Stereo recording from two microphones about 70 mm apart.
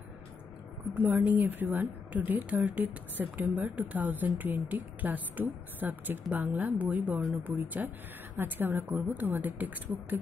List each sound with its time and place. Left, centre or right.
1.0 s a woman's voice: right